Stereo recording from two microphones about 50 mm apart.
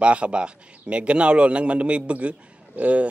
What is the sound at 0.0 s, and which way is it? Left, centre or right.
A man's voice, right.